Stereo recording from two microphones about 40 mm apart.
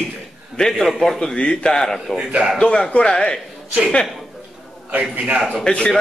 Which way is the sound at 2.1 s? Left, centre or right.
Right.